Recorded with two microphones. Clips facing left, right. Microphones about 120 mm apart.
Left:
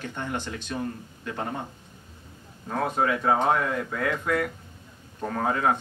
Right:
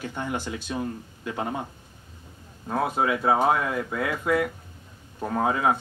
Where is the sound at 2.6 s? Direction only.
10° right (ahead or behind).